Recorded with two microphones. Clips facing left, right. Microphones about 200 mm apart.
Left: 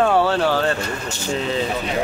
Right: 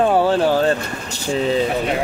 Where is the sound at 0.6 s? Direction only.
35° right (ahead or behind).